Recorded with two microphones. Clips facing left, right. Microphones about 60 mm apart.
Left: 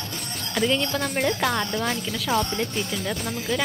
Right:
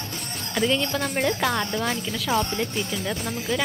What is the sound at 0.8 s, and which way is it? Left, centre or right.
A woman's voice, right.